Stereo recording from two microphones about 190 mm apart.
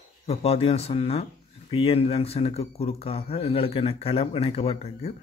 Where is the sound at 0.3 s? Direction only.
30° left (ahead or behind).